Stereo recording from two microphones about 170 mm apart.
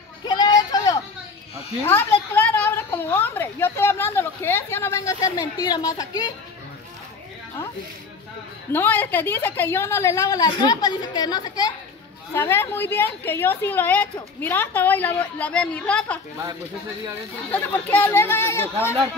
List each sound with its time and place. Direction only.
0.3 s a sound: 25° left (ahead or behind)
1.9 s a woman's voice: 10° left (ahead or behind)
8.7 s a woman's voice: 10° left (ahead or behind)
17.5 s a woman's voice: 10° left (ahead or behind)